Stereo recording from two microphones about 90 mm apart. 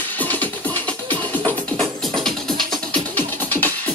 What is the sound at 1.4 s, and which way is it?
Music, 5° left (ahead or behind).